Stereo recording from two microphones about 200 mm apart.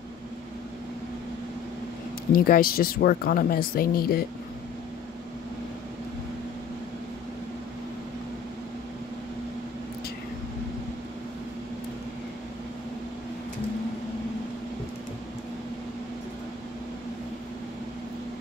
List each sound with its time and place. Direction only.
2.3 s speech: 45° left (ahead or behind)